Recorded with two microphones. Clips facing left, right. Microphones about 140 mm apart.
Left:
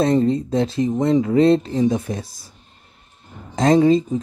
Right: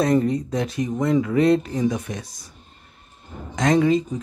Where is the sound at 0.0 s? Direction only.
30° left (ahead or behind).